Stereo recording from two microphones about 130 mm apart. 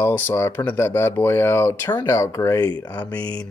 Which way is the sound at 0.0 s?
20° left (ahead or behind).